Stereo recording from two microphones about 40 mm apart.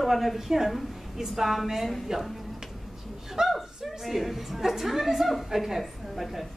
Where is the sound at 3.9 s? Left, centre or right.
Centre.